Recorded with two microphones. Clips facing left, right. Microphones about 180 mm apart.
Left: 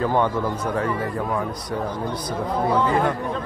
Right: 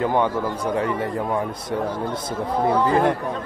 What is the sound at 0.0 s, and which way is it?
A man's voice, 15° right (ahead or behind).